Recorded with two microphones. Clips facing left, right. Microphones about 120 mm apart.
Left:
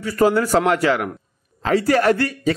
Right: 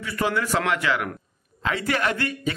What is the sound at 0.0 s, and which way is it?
A man's voice, 40° left (ahead or behind).